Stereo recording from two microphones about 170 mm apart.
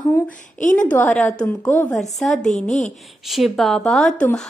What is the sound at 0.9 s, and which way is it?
A woman's voice, 5° left (ahead or behind).